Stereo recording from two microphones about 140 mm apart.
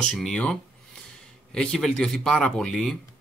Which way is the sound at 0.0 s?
5° left (ahead or behind).